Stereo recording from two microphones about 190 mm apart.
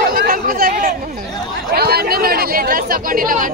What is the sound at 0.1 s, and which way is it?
Chatter, 50° right (ahead or behind).